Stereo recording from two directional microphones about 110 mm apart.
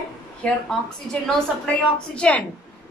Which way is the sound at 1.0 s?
5° left (ahead or behind).